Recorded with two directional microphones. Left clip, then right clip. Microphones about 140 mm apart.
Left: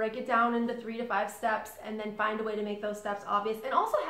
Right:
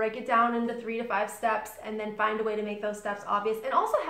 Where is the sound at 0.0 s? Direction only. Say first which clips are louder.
Right 3 dB; 25° right (ahead or behind).